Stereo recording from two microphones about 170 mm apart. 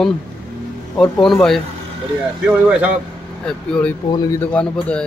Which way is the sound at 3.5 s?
5° left (ahead or behind).